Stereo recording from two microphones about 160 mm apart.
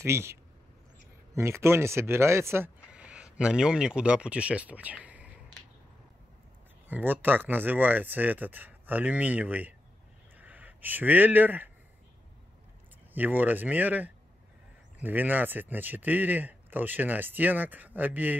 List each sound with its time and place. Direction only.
0.0 s speech: 15° right (ahead or behind)
6.9 s speech: 10° right (ahead or behind)
13.1 s speech: 10° right (ahead or behind)